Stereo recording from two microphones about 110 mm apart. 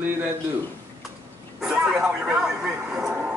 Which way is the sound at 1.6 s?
5° right (ahead or behind).